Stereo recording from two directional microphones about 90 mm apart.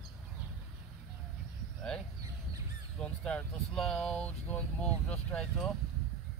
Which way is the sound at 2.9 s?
10° left (ahead or behind).